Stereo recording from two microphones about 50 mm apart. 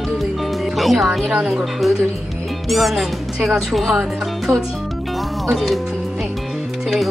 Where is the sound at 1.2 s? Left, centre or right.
Centre.